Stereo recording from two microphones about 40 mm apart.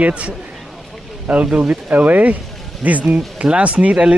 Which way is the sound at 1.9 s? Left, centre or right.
Right.